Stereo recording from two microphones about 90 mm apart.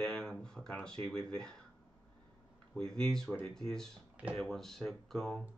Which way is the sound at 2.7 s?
5° left (ahead or behind).